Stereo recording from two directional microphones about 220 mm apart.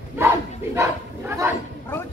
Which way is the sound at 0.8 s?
10° right (ahead or behind).